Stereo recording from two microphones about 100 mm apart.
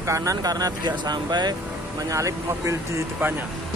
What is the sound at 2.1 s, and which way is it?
Speech, 30° right (ahead or behind).